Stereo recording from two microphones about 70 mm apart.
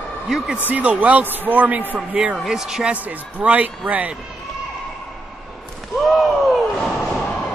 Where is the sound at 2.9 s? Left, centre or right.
Right.